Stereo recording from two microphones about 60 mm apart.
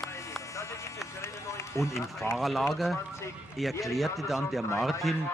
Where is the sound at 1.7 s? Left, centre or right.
Left.